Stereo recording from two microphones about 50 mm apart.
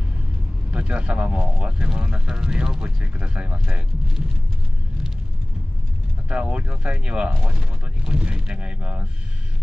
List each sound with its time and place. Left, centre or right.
0.7 s speech: right
3.2 s speech: right
6.2 s speech: right